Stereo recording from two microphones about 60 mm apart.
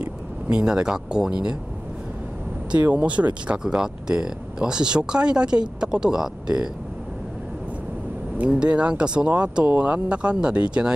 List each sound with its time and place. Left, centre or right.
0.5 s speech: centre
2.7 s speech: right
3.5 s speech: centre
8.5 s speech: centre